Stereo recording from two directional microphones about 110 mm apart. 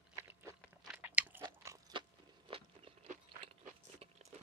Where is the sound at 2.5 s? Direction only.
55° right (ahead or behind).